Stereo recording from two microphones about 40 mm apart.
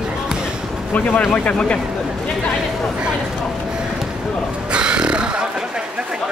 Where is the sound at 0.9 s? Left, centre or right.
Left.